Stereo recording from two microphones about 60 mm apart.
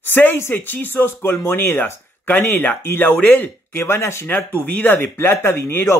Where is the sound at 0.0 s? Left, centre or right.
Left.